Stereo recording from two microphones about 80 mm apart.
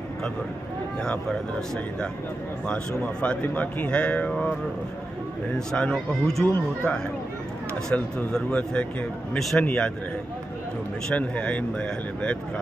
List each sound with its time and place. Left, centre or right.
1.0 s a man's voice: centre
3.0 s a man's voice: centre
5.7 s a man's voice: centre
6.5 s a man's voice: centre
11.1 s a man's voice: centre